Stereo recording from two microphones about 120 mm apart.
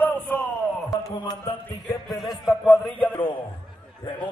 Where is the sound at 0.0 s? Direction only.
15° left (ahead or behind).